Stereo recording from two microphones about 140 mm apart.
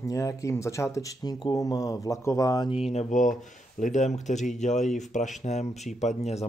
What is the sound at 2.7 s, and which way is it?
Speech, 50° left (ahead or behind).